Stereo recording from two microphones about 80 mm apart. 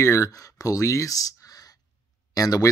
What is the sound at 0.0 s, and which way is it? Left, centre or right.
Speech, left.